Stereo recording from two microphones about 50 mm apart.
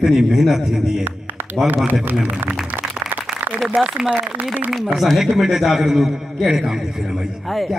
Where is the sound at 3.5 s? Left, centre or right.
Right.